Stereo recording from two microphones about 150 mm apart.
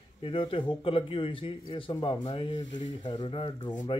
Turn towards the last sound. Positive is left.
turn(degrees=30)  # may be behind; listen again after turning